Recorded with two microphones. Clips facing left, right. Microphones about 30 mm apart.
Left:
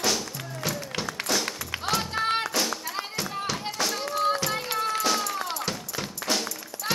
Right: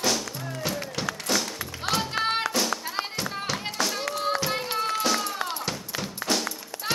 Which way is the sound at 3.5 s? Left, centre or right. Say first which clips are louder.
Right 2 dB; centre.